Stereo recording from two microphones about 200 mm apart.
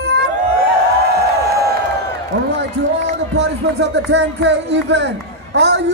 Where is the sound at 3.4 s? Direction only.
60° right (ahead or behind).